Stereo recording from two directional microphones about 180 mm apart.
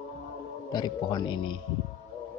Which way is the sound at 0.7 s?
25° left (ahead or behind).